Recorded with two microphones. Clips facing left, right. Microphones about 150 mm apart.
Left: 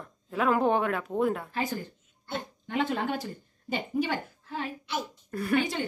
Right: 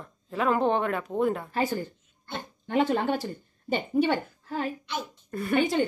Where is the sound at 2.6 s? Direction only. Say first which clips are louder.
Right 5 dB; 40° right (ahead or behind).